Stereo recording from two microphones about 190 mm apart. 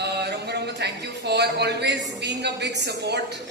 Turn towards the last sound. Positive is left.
turn(degrees=-60)  # may be behind; listen again after turning